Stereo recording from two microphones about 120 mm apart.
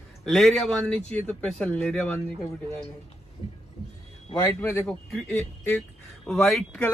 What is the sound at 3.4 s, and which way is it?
Heart sounds, 55° left (ahead or behind).